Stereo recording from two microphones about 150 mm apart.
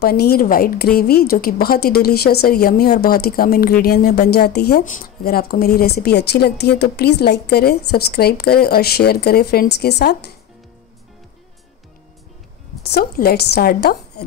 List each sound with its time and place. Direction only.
0.0 s a woman's voice: 90° left
12.8 s a woman's voice: 90° left